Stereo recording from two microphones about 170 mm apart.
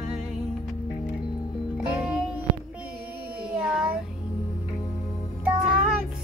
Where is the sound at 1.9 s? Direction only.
5° right (ahead or behind).